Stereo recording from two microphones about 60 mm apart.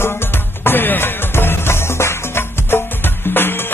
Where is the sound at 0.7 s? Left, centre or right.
Left.